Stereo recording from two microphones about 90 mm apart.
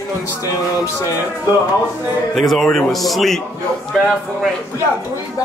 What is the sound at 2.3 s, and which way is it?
Speech, centre (ahead or behind).